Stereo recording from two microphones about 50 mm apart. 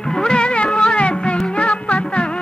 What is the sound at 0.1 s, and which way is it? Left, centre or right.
Music, centre.